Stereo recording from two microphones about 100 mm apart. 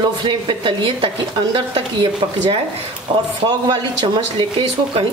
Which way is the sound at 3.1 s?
50° right (ahead or behind).